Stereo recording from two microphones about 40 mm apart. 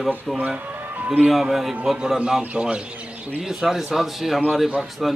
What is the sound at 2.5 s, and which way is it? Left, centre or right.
Speech, right.